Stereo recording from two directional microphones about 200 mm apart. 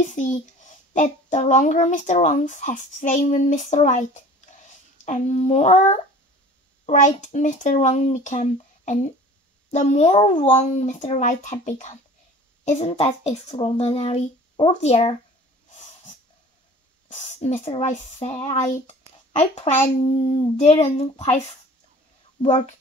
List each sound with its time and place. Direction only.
0.1 s speech: 35° left (ahead or behind)
17.1 s speech: 35° left (ahead or behind)
22.4 s speech: 35° left (ahead or behind)